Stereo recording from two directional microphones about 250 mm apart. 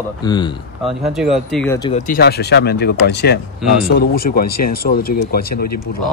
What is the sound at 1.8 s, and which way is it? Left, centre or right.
Speech, left.